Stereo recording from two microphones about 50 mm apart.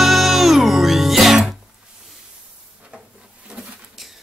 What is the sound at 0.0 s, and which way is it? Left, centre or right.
Music, centre.